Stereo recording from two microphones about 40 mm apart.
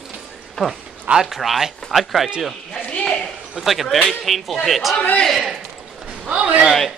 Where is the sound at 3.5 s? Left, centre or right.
Centre.